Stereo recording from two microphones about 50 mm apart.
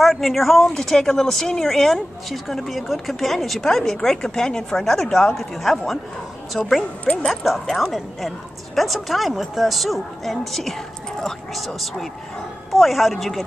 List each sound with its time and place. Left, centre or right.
0.0 s speech: centre
7.2 s speech: centre